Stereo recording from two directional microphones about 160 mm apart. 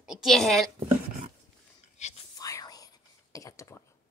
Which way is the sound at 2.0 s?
45° left (ahead or behind).